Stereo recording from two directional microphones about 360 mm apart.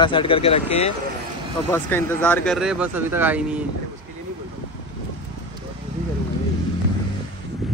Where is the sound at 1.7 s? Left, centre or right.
Centre.